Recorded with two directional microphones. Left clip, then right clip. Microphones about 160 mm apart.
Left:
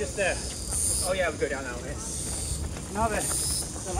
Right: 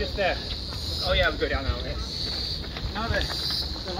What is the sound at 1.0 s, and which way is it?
Speech, 25° right (ahead or behind).